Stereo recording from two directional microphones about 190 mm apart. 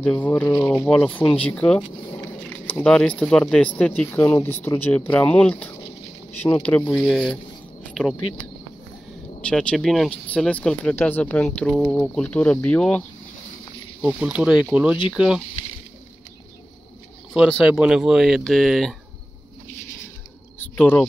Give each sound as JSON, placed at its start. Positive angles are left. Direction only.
{"t": 0.0, "sound": "speech", "side_deg": 10}
{"t": 9.4, "sound": "speech", "side_deg": 5}
{"t": 14.0, "sound": "speech", "side_deg": -5}
{"t": 17.3, "sound": "speech", "side_deg": -5}
{"t": 20.5, "sound": "a sound", "side_deg": 10}